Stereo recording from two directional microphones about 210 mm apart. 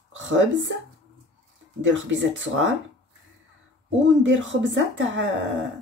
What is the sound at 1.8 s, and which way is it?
Speech, 60° right (ahead or behind).